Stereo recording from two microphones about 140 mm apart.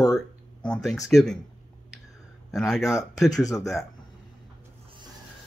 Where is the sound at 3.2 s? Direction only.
25° left (ahead or behind).